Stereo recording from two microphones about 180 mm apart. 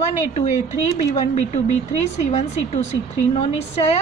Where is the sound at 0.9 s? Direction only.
40° left (ahead or behind).